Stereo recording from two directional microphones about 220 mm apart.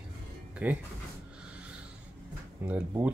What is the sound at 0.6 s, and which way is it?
Speech, 5° right (ahead or behind).